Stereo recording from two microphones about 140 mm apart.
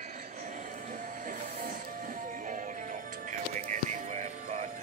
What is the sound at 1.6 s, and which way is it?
Music, 75° right (ahead or behind).